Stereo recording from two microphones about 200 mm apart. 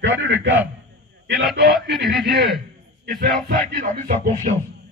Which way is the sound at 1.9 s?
55° right (ahead or behind).